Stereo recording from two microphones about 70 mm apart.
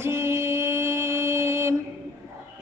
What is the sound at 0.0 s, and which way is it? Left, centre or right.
Mantra, right.